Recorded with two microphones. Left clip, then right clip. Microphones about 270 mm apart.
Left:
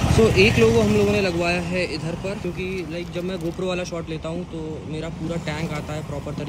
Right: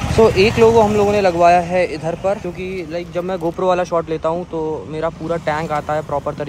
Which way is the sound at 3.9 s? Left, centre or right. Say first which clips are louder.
Right 13 dB; right.